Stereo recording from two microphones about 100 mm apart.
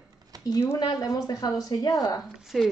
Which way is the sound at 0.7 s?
40° left (ahead or behind).